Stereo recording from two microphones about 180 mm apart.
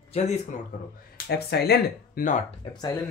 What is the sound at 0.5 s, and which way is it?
Speech, 45° left (ahead or behind).